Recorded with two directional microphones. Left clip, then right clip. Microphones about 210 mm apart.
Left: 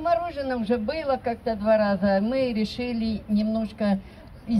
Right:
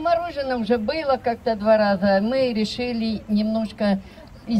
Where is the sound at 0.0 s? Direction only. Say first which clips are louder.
Right 3 dB; 20° right (ahead or behind).